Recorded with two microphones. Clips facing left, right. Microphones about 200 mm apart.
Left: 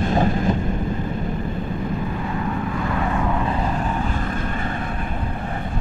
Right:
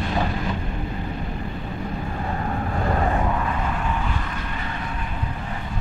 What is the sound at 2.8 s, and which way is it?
Vehicle, 40° right (ahead or behind).